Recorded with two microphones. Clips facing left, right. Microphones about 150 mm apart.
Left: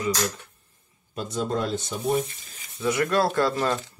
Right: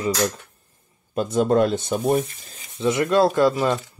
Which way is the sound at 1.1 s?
50° right (ahead or behind).